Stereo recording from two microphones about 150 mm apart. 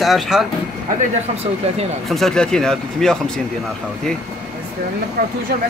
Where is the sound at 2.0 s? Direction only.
Centre (ahead or behind).